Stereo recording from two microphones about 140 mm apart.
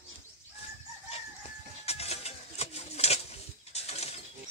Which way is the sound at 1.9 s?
50° left (ahead or behind).